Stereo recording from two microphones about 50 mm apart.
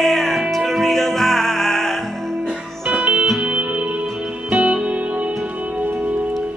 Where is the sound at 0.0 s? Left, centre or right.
Centre.